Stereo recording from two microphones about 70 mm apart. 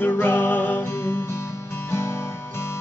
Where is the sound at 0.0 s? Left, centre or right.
Left.